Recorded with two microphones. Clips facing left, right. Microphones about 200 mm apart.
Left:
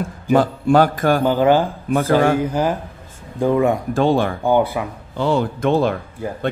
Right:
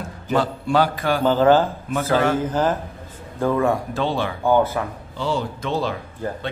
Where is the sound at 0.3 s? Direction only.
50° left (ahead or behind).